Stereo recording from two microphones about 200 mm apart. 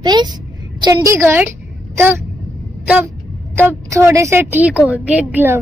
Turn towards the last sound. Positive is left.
turn(degrees=-10)  # may be behind; listen again after turning